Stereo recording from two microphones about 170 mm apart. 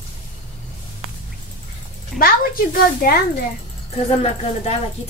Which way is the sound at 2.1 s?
60° left (ahead or behind).